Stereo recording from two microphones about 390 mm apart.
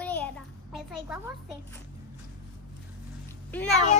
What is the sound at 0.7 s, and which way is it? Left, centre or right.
Speech, centre.